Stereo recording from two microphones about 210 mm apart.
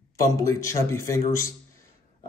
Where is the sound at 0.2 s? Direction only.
15° left (ahead or behind).